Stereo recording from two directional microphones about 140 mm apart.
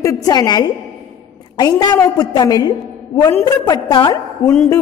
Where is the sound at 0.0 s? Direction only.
25° left (ahead or behind).